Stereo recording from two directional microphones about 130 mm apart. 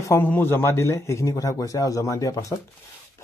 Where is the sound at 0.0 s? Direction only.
20° left (ahead or behind).